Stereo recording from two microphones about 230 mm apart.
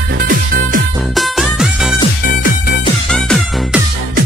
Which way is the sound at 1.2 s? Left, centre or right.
Centre.